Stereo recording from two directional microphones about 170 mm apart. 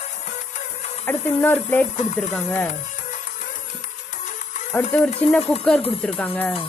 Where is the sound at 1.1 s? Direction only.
10° left (ahead or behind).